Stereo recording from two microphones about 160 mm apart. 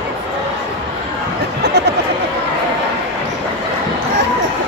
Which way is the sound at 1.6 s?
90° right.